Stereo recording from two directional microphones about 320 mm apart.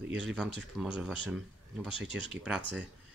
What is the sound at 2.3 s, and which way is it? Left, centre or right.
Speech, centre.